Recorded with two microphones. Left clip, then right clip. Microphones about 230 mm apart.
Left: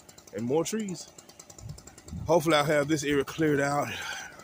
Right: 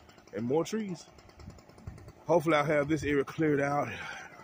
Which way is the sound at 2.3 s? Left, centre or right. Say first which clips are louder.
Left 3 dB; centre.